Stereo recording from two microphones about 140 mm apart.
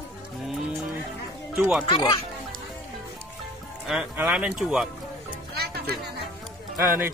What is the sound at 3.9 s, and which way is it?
Speech, 5° right (ahead or behind).